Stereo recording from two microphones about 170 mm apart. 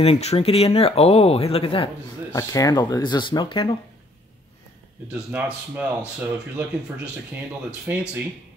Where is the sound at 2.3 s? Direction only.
20° left (ahead or behind).